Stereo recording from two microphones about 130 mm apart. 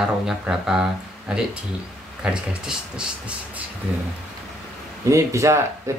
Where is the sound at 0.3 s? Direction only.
5° right (ahead or behind).